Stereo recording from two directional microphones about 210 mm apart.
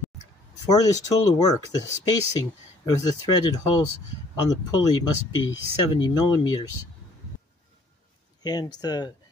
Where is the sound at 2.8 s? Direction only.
15° left (ahead or behind).